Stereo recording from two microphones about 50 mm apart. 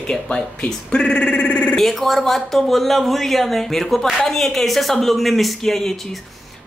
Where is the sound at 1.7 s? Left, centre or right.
Centre.